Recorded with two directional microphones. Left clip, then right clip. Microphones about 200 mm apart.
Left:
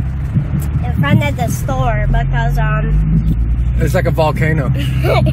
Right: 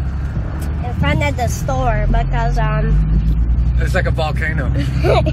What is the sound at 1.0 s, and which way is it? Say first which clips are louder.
Speech: left 1 dB; 5° right (ahead or behind).